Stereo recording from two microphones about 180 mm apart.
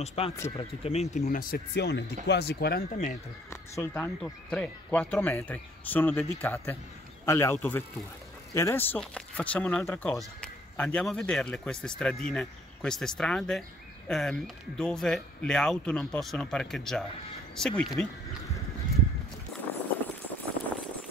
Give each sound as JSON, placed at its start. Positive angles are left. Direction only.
{"t": 0.0, "sound": "speech", "side_deg": 35}
{"t": 3.7, "sound": "speech", "side_deg": 15}
{"t": 19.5, "sound": "a sound", "side_deg": 0}